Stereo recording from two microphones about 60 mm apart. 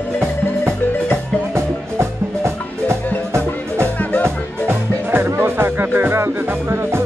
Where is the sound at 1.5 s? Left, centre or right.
Right.